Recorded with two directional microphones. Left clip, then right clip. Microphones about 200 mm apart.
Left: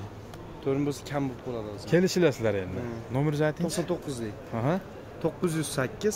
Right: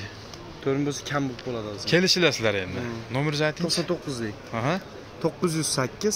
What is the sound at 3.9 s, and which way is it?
Speech, 45° right (ahead or behind).